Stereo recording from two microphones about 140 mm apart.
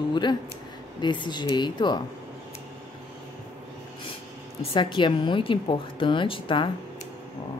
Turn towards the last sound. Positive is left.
turn(degrees=35)  # may be behind; listen again after turning